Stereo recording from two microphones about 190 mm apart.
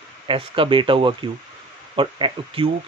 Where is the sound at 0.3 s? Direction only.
25° right (ahead or behind).